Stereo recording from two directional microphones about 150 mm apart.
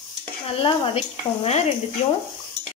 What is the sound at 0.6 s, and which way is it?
Stir, 35° left (ahead or behind).